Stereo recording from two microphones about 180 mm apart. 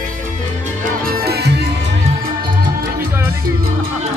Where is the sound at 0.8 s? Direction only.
55° right (ahead or behind).